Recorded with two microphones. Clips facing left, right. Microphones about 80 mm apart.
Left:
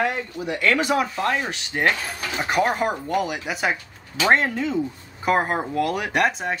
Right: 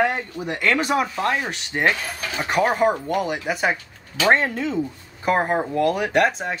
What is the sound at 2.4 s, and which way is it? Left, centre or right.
Speech, centre.